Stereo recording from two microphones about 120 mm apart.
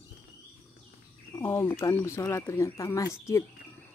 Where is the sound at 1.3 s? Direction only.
25° left (ahead or behind).